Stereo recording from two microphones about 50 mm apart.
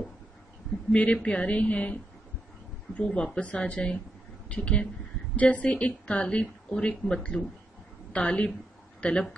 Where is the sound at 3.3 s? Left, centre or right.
Left.